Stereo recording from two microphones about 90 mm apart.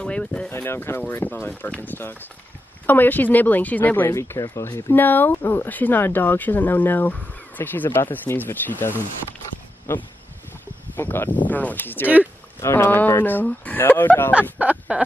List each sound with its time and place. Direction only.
0.0 s a sound: 10° left (ahead or behind)
0.5 s speech: 25° left (ahead or behind)
4.9 s speech: 20° left (ahead or behind)
11.0 s speech: 25° left (ahead or behind)
14.6 s speech: 15° right (ahead or behind)